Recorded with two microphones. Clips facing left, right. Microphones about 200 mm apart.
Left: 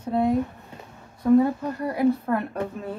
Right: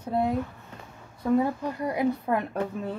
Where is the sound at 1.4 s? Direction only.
15° right (ahead or behind).